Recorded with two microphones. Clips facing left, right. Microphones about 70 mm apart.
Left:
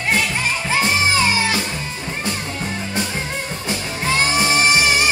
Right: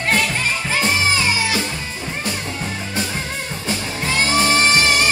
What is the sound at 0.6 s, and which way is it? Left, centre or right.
Music, left.